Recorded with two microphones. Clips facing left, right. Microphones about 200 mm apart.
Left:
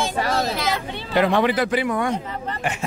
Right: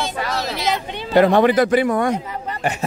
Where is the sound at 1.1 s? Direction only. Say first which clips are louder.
Right 5 dB; 45° right (ahead or behind).